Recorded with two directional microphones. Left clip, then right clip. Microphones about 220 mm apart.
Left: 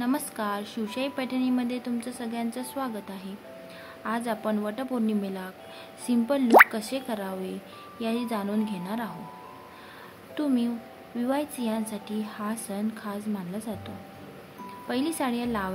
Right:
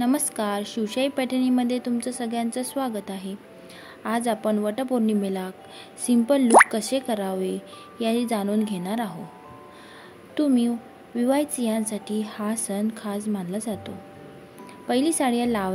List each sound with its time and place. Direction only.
0.0 s a woman's voice: 20° right (ahead or behind)
6.4 s speech: centre (ahead or behind)
6.7 s speech: 20° right (ahead or behind)
10.3 s speech: 20° right (ahead or behind)